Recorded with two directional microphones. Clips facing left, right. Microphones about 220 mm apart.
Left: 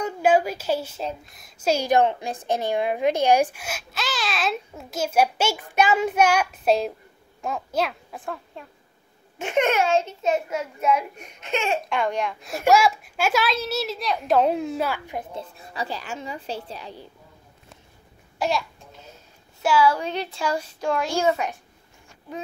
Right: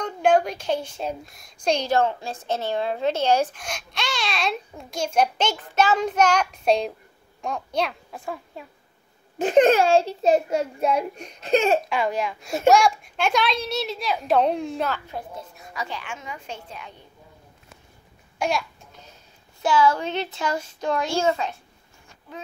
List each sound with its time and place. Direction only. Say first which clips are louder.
0.0 s a child's voice: even; 5° left (ahead or behind)
1.9 s a woman's voice: left 2 dB; 15° left (ahead or behind); by 8.6 s 5° right (ahead or behind)
9.4 s a child's voice: right 5 dB; 35° right (ahead or behind)
11.9 s a child's voice: even; centre (ahead or behind); by 15.2 s 15° left (ahead or behind)
15.3 s a woman's voice: left 2 dB; 30° left (ahead or behind)
18.4 s babbling: even; centre (ahead or behind)
19.6 s a woman's voice: even; 10° left (ahead or behind)